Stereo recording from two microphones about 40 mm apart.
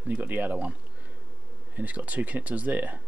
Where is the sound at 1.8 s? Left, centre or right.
Right.